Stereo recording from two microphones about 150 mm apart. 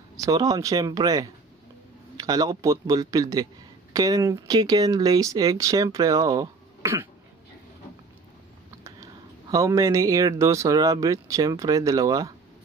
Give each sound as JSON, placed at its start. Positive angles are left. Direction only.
{"t": 0.2, "sound": "speech", "side_deg": -25}
{"t": 8.8, "sound": "speech", "side_deg": -20}